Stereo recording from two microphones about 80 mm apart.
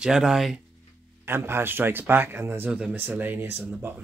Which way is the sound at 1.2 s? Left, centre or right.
Right.